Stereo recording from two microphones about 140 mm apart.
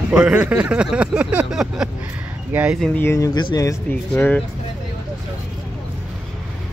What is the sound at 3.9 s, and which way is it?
Speech, 10° left (ahead or behind).